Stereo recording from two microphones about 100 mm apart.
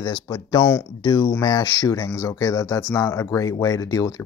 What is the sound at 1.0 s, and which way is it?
Speech, 35° left (ahead or behind).